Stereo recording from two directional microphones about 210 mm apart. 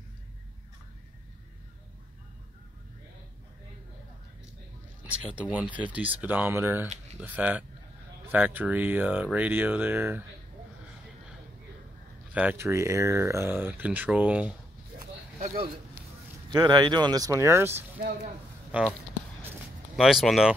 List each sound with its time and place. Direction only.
5.0 s speech: 5° right (ahead or behind)
12.4 s speech: 10° right (ahead or behind)
15.0 s a sound: 40° right (ahead or behind)
16.5 s speech: 20° right (ahead or behind); by 18.9 s 5° right (ahead or behind)
20.0 s speech: centre (ahead or behind)